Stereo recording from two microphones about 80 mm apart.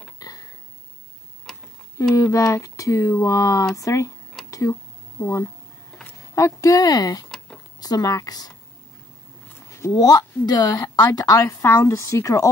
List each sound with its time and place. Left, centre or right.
0.2 s a sound: left
2.1 s speech: left
4.5 s a sound: left
5.2 s a woman's voice: left
7.2 s tick-tock: centre
7.8 s a woman's voice: left
9.7 s a sound: left
9.9 s a woman's voice: left
11.4 s speech: left